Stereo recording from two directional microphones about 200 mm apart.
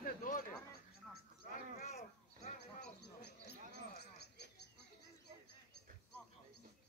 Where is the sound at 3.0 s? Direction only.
55° left (ahead or behind).